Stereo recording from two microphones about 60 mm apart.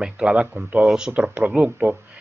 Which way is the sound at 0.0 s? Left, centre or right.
Centre.